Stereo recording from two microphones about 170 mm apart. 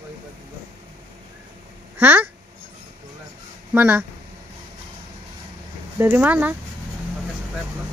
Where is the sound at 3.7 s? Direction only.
10° right (ahead or behind).